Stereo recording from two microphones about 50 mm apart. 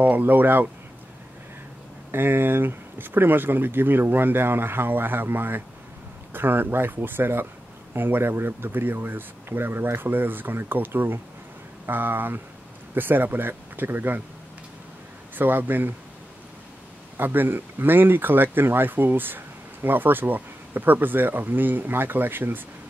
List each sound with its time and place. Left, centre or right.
0.0 s speech: right
2.0 s speech: right
15.3 s speech: right
17.2 s speech: right